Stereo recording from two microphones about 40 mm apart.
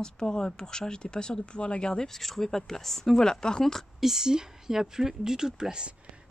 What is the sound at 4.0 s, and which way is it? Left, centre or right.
Speech, centre.